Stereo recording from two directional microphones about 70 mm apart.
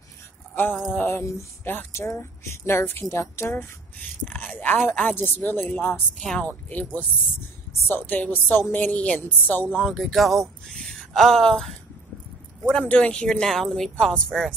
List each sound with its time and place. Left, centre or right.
0.9 s speech: left
4.5 s a woman's voice: left
6.1 s speech: centre
6.4 s a woman's voice: left
8.1 s a woman's voice: left
9.8 s speech: centre
12.8 s speech: centre